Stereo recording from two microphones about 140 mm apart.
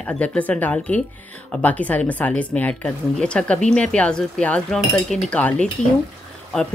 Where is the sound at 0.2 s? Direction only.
10° left (ahead or behind).